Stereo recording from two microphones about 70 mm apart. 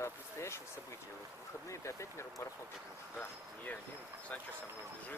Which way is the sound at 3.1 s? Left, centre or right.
Left.